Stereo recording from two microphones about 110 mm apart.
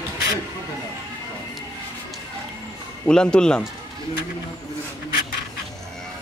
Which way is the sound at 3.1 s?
5° left (ahead or behind).